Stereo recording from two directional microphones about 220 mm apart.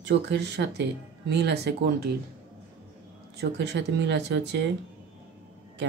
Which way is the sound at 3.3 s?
50° right (ahead or behind).